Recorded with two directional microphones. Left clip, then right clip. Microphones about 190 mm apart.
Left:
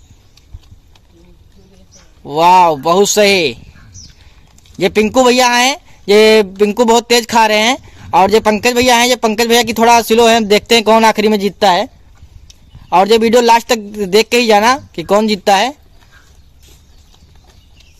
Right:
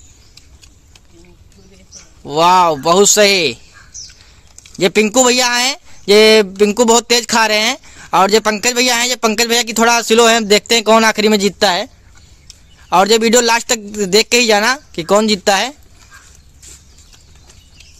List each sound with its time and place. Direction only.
2.2 s speech: centre (ahead or behind)
3.9 s horse: 35° right (ahead or behind)
4.7 s speech: centre (ahead or behind)
12.9 s speech: 5° right (ahead or behind)